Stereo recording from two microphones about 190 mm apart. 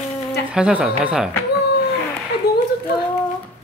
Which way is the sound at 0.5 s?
5° right (ahead or behind).